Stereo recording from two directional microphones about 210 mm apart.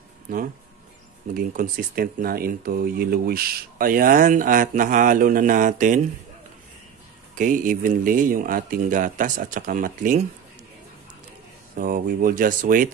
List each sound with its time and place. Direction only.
1.3 s speech: 40° right (ahead or behind)
7.3 s speech: 40° right (ahead or behind)
11.7 s speech: 40° right (ahead or behind)